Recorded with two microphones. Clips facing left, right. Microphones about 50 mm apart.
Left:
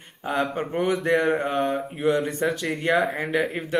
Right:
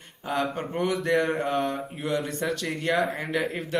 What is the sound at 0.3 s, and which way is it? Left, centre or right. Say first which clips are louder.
A man's voice: left 3 dB; centre.